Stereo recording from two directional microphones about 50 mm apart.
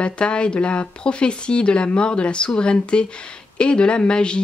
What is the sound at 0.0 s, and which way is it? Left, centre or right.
Speech, centre.